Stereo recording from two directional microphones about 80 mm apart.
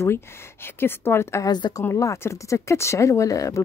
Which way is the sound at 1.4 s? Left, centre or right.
Left.